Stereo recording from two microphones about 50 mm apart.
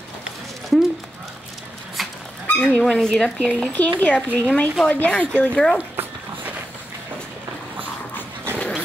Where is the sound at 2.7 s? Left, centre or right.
Centre.